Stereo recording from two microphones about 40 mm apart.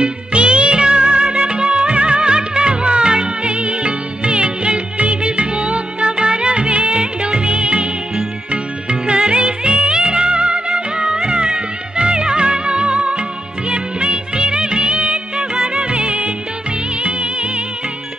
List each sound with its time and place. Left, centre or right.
0.0 s music: right
13.7 s music of bollywood: right
17.0 s music: right